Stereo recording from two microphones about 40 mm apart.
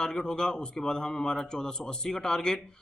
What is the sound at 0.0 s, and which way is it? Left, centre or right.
A man's voice, centre.